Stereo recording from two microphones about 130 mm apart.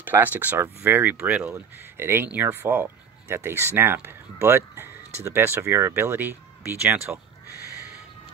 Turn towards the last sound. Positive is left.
turn(degrees=-15)  # may be behind; listen again after turning